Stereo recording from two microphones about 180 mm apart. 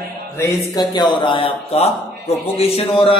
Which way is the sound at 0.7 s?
25° left (ahead or behind).